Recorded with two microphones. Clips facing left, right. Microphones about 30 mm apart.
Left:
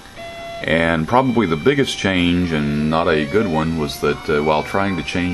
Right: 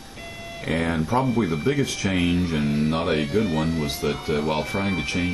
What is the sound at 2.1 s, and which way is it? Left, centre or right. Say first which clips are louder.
Speech: left 3 dB; left.